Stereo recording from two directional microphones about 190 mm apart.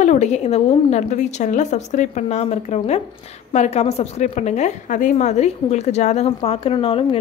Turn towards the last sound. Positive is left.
turn(degrees=30)  # may be behind; listen again after turning